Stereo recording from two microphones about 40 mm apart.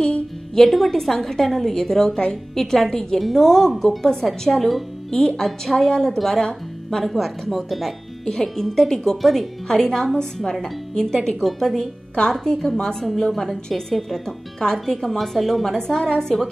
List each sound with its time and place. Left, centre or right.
0.0 s music: centre
0.7 s a woman's voice: centre
5.1 s speech: centre
7.2 s a woman's voice: centre
8.3 s a woman's voice: centre